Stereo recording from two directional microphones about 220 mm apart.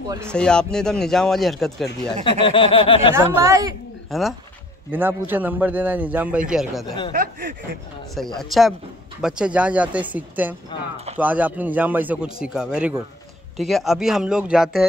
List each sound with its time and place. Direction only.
0.3 s speech: 5° left (ahead or behind)
2.4 s a sound: 25° left (ahead or behind)
3.2 s a man's voice: 15° right (ahead or behind)
4.1 s a man's voice: centre (ahead or behind)
7.1 s speech: 40° right (ahead or behind)
8.4 s speech: centre (ahead or behind)
10.7 s a sound: 20° left (ahead or behind)
11.1 s a man's voice: 5° right (ahead or behind)